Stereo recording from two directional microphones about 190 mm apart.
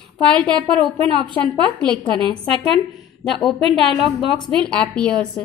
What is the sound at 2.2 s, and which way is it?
Speech, 25° right (ahead or behind).